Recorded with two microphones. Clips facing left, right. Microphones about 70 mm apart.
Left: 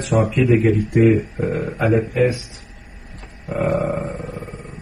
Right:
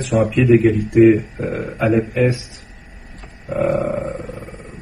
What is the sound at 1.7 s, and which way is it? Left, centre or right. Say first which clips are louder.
Speech: right 2 dB; left.